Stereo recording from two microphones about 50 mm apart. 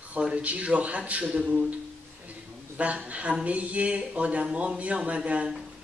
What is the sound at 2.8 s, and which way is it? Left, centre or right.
Speech, right.